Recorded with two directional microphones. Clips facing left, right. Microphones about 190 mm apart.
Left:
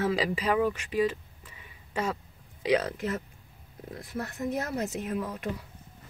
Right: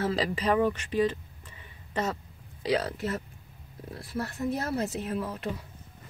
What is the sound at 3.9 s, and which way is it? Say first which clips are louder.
Speech: right 2 dB; 20° left (ahead or behind).